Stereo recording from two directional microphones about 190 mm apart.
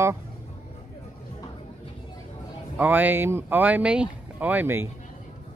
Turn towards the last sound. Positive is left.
turn(degrees=-10)  # may be behind; listen again after turning